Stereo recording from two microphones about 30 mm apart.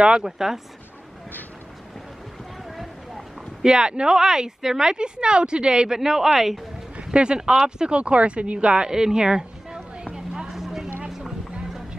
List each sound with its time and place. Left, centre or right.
0.2 s a woman's voice: centre
2.7 s a sound: centre
3.6 s speech: right
5.9 s a woman's voice: centre; by 8.8 s right
8.8 s speech: right
10.1 s vehicle: right
10.5 s vehicle: centre